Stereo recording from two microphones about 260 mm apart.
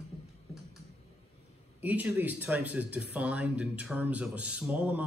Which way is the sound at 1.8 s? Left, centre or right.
Centre.